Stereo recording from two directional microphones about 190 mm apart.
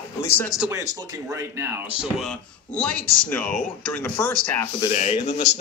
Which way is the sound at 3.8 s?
10° left (ahead or behind).